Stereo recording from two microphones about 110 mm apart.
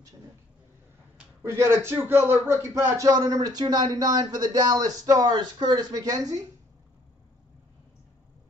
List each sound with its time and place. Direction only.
1.4 s speech: 25° right (ahead or behind)